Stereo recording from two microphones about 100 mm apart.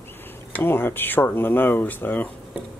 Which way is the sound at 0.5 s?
20° left (ahead or behind).